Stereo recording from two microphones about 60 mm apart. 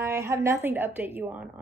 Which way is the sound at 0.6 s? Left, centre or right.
Right.